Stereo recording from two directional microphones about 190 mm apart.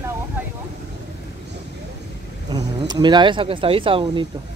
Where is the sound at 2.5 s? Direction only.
20° right (ahead or behind).